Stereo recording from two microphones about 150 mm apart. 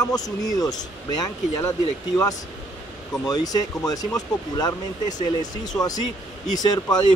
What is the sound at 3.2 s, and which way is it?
Speech, 25° left (ahead or behind).